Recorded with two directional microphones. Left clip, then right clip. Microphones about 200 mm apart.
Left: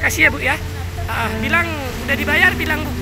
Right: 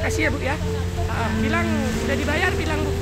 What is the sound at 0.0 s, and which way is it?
Speech, 5° left (ahead or behind).